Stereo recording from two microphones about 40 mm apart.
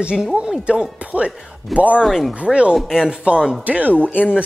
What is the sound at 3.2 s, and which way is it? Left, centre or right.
Speech, right.